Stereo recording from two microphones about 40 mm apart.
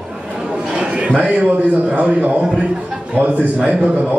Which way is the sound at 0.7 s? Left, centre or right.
Right.